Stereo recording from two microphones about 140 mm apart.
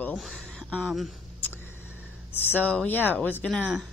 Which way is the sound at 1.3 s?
15° left (ahead or behind).